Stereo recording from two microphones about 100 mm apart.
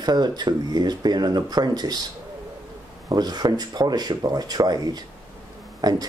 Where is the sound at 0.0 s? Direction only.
45° right (ahead or behind).